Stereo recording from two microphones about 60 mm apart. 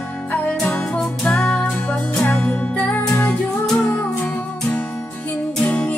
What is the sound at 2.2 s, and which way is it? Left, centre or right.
Music, left.